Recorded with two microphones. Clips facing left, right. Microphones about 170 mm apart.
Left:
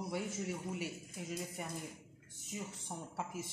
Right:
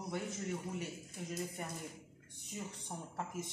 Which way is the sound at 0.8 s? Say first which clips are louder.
Left 1 dB; 5° left (ahead or behind).